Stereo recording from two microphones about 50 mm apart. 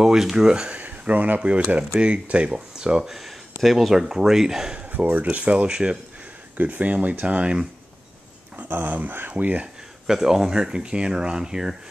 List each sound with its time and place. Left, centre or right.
0.0 s speech: centre
0.5 s speech: right
3.1 s speech: centre
4.7 s speech: right
6.5 s speech: right
8.6 s speech: right
10.0 s speech: centre